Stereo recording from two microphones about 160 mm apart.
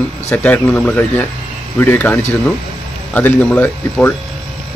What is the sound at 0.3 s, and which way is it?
Speech, 10° left (ahead or behind).